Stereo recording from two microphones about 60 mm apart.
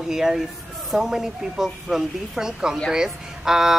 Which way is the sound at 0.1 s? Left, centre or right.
Centre.